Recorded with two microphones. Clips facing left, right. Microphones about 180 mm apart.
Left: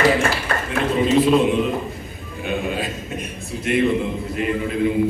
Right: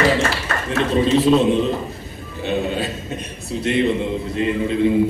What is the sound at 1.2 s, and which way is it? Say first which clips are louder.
Speech: right 2 dB; 25° right (ahead or behind).